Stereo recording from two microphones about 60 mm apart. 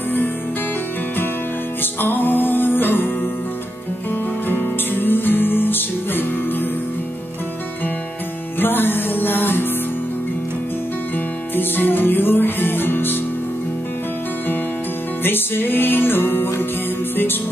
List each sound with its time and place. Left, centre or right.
1.8 s music: left
4.5 s music: left
8.5 s music: left
11.5 s music: left
15.2 s music: left